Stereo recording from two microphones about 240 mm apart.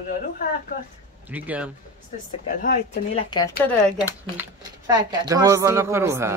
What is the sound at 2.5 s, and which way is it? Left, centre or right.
Speech, left.